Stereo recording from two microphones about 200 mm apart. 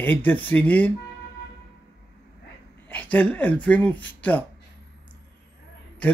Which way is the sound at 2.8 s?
10° left (ahead or behind).